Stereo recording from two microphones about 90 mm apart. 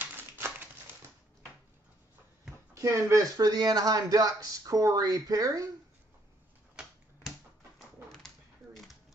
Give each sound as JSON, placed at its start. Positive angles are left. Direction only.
{"t": 0.0, "sound": "crumpling", "side_deg": -25}
{"t": 2.7, "sound": "speech", "side_deg": -35}
{"t": 6.8, "sound": "finger snapping", "side_deg": -10}